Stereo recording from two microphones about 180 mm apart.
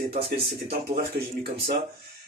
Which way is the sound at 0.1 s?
60° right (ahead or behind).